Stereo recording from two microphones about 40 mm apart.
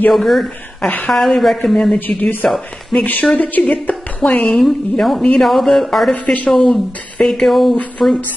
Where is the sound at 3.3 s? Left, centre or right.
Left.